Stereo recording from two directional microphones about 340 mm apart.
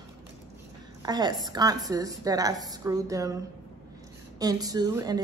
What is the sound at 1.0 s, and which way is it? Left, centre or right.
A woman's voice, centre.